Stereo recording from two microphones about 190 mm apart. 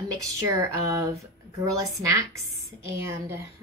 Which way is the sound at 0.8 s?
15° right (ahead or behind).